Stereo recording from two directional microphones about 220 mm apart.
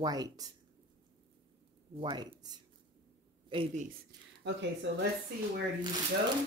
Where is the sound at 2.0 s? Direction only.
20° right (ahead or behind).